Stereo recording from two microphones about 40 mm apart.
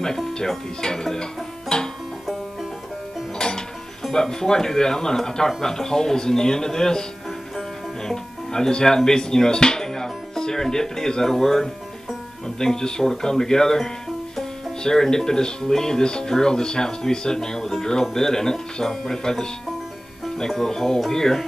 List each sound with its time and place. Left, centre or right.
0.7 s music: centre
3.3 s music: centre
4.0 s speech: centre